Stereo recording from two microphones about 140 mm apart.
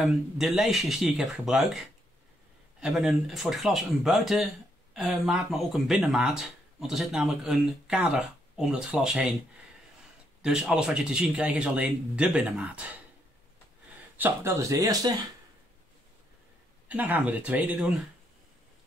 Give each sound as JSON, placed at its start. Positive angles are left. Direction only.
{"t": 0.0, "sound": "speech", "side_deg": 0}
{"t": 2.8, "sound": "speech", "side_deg": 0}
{"t": 10.4, "sound": "speech", "side_deg": -5}
{"t": 14.1, "sound": "speech", "side_deg": -15}
{"t": 16.8, "sound": "speech", "side_deg": -10}